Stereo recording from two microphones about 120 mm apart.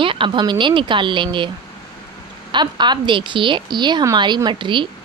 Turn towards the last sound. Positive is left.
turn(degrees=-45)  # may be behind; listen again after turning